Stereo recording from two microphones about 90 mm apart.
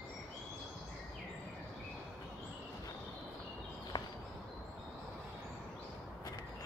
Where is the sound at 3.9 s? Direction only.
60° left (ahead or behind).